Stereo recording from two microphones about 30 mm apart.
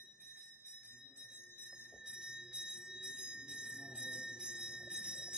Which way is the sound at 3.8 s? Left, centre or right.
Right.